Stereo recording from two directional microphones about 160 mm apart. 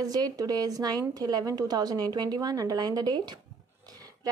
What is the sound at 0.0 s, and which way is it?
A woman's voice, 25° right (ahead or behind).